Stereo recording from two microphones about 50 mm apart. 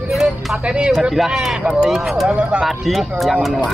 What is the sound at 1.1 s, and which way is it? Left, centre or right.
Speech, centre.